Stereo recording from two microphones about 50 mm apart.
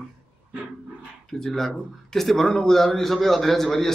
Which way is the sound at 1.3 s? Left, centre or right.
Centre.